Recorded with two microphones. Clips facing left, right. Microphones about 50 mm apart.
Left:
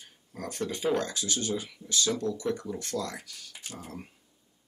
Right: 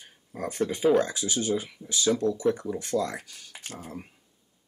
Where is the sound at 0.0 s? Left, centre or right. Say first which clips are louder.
Right 5 dB; centre.